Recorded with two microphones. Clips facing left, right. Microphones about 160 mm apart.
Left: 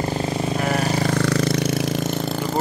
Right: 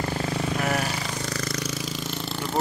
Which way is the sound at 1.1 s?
70° left (ahead or behind).